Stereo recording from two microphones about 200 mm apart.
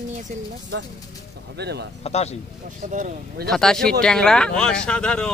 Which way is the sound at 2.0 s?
30° left (ahead or behind).